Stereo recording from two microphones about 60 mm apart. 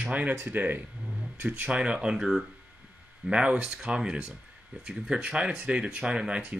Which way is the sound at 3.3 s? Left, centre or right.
Centre.